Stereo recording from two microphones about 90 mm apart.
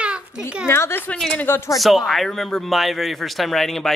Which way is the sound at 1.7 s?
Centre (ahead or behind).